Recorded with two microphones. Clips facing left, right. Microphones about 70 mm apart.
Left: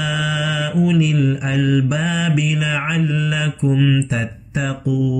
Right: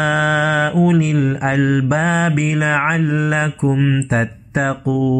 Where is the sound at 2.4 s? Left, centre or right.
Right.